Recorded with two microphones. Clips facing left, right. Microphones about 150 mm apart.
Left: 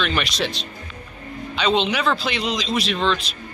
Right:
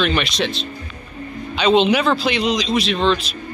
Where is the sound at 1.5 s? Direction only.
5° right (ahead or behind).